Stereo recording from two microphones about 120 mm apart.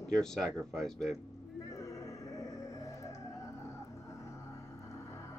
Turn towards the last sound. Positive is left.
turn(degrees=25)  # may be behind; listen again after turning